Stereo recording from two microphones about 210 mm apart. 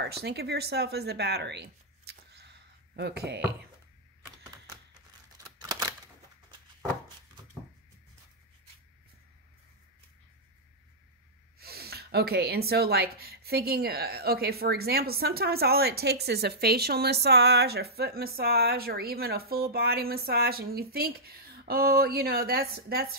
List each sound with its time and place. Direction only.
0.0 s speech: 50° right (ahead or behind)
5.4 s scissors: 20° right (ahead or behind)
11.6 s speech: 45° right (ahead or behind)